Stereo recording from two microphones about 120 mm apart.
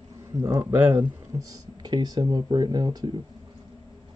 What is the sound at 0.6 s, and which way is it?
Speech, 20° right (ahead or behind).